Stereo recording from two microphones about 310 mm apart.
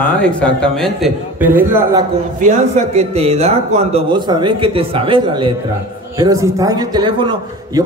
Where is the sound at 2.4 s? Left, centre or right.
Right.